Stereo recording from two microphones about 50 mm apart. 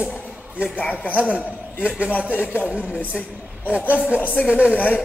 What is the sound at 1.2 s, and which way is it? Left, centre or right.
Speech, right.